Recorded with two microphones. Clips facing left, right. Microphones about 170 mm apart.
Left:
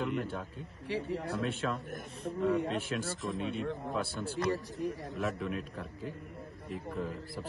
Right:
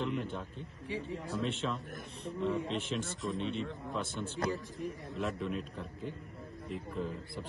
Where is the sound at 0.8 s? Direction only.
80° left.